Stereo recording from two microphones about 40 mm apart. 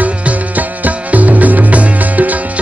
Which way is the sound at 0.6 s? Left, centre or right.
Right.